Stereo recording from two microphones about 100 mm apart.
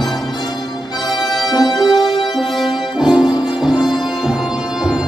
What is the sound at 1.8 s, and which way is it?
Music, 5° right (ahead or behind).